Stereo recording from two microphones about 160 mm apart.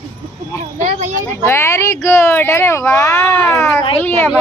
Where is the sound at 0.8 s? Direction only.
50° right (ahead or behind).